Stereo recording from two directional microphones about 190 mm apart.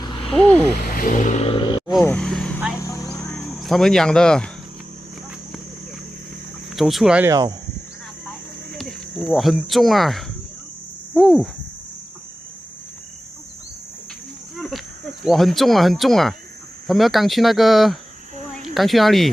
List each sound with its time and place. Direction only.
0.0 s a sound: 25° left (ahead or behind)
0.7 s vehicle: 45° left (ahead or behind); by 1.8 s 25° left (ahead or behind)
2.0 s vehicle: 5° left (ahead or behind)
2.8 s a sound: 15° left (ahead or behind)
3.3 s speech: centre (ahead or behind)
6.7 s speech: centre (ahead or behind)
7.2 s speech: 20° right (ahead or behind)
8.3 s a sound: centre (ahead or behind)
11.1 s speech: centre (ahead or behind)
15.2 s speech: centre (ahead or behind)